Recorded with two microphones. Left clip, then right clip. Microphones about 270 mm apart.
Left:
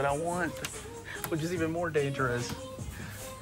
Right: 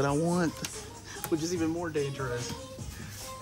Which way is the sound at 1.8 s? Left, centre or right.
Centre.